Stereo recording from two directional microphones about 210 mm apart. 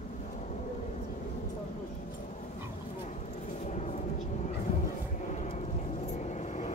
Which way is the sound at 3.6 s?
35° left (ahead or behind).